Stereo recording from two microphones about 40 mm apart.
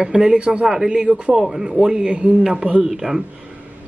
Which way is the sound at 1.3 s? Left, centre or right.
Centre.